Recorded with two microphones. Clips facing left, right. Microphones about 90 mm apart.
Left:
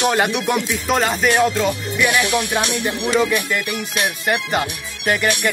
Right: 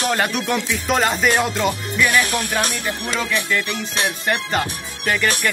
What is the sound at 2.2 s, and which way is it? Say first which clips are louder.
Music: left 2 dB; 40° right (ahead or behind).